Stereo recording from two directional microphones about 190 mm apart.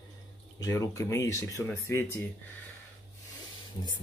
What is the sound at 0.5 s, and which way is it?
Speech, 20° left (ahead or behind).